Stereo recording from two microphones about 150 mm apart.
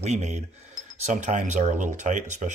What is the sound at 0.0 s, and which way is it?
Speech, 50° right (ahead or behind).